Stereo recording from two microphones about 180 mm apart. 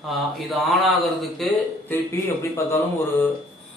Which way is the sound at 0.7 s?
Centre (ahead or behind).